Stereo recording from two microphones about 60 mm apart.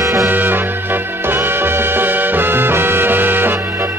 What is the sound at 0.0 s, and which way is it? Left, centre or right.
Music, right.